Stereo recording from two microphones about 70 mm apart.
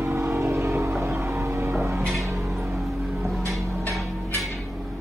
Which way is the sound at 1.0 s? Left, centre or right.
Right.